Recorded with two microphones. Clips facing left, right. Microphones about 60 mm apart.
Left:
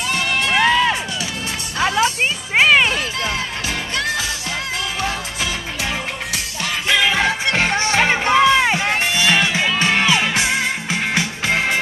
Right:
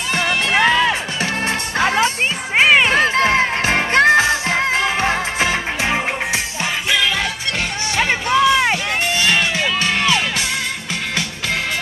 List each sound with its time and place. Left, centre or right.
0.5 s music: centre
1.8 s music: right
2.6 s a sound: centre
2.9 s music: right
7.1 s music: left